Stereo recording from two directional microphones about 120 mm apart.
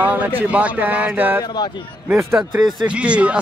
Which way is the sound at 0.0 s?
15° right (ahead or behind).